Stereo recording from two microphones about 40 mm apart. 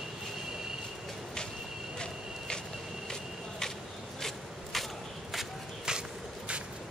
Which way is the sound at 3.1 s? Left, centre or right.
Centre.